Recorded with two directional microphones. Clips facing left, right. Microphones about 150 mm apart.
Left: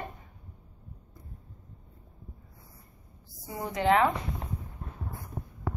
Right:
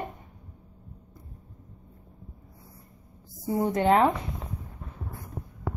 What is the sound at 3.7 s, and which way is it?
Speech, 40° right (ahead or behind).